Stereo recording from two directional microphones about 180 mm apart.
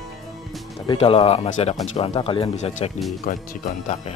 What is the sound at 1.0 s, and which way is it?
Speech, 35° left (ahead or behind).